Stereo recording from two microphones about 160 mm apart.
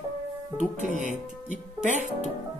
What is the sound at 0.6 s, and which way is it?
Speech, 50° right (ahead or behind).